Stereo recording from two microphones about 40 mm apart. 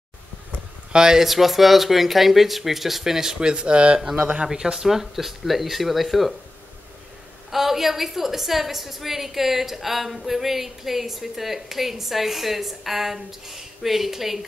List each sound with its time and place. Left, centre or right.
0.9 s speech: centre
1.2 s a woman's voice: centre; by 4.0 s right
4.5 s a woman's voice: centre
7.5 s a woman's voice: centre